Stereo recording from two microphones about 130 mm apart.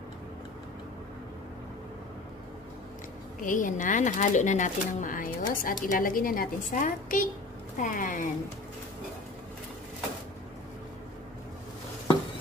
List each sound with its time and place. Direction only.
3.4 s speech: 90° left